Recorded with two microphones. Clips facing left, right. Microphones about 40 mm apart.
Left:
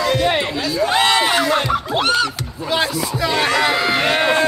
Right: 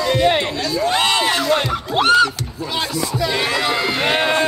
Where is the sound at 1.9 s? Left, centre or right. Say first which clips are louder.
Right 6 dB; centre.